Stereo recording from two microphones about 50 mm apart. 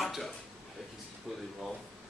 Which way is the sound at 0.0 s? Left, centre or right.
Centre.